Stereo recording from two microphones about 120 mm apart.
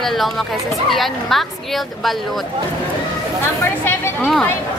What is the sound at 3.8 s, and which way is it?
Speech, 20° left (ahead or behind).